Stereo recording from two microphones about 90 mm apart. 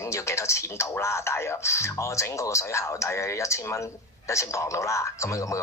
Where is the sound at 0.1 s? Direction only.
30° left (ahead or behind).